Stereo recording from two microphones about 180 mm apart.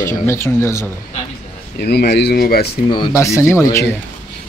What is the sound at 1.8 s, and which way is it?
Speech, 65° left (ahead or behind).